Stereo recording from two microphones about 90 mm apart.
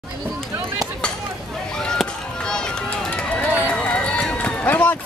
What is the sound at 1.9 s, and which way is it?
Run, 10° left (ahead or behind).